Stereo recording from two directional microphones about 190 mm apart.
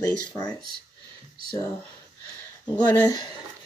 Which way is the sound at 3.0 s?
20° left (ahead or behind).